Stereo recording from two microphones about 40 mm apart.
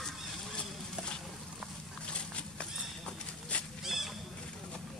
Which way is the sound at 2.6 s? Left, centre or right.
Left.